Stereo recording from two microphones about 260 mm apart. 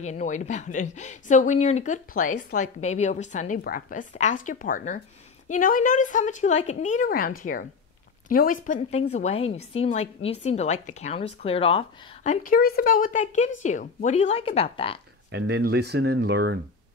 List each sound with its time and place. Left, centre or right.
0.0 s a woman's voice: left
15.3 s speech: right